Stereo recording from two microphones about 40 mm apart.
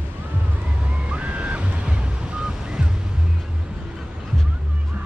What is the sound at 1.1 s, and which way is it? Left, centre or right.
Waves, right.